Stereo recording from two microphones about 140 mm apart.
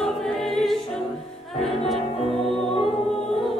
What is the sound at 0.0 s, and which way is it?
Music, centre (ahead or behind).